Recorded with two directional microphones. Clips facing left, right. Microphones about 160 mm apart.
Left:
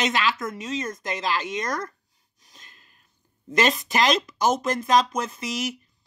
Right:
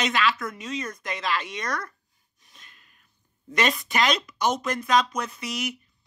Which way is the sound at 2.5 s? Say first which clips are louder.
Left 2 dB; 35° left (ahead or behind).